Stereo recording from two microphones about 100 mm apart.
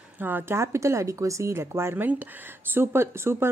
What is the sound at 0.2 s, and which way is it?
A woman's voice, 20° right (ahead or behind).